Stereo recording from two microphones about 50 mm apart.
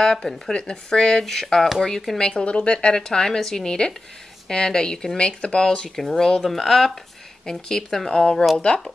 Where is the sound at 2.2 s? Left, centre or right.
Centre.